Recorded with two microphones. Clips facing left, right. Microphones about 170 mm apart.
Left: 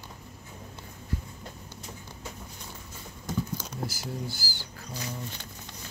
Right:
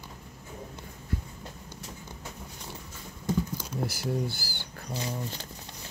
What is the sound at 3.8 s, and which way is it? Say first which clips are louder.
Speech: right 7 dB; 60° right (ahead or behind).